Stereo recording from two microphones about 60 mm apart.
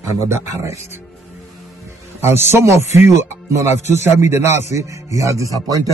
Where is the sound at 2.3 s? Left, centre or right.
Right.